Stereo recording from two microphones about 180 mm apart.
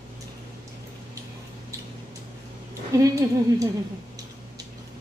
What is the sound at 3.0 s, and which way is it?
Speech, 20° right (ahead or behind).